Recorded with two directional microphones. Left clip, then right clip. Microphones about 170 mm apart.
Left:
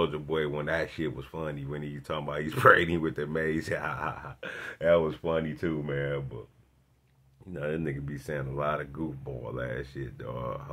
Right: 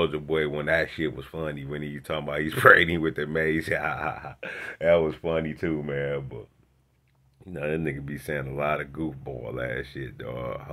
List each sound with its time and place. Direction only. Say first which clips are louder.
0.0 s speech: right 4 dB; 15° right (ahead or behind)
7.5 s speech: right 4 dB; 20° right (ahead or behind)